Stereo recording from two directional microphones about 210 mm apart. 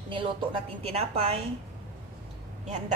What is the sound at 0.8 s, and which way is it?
Speech, 30° right (ahead or behind).